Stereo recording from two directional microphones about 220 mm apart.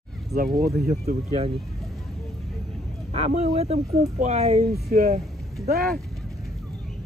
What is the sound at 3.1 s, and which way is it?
Speech, 25° right (ahead or behind).